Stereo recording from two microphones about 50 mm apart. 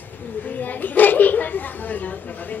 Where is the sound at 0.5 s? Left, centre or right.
Left.